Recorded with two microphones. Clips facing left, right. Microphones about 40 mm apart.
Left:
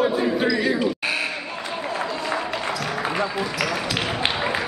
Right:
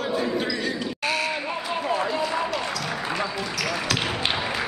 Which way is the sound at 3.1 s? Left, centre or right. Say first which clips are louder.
Left 3 dB; centre.